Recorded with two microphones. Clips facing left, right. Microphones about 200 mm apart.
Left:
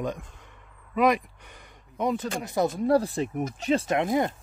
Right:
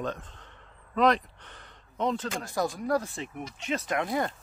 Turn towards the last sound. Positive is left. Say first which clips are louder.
# left 5 dB
turn(degrees=20)  # may be behind; listen again after turning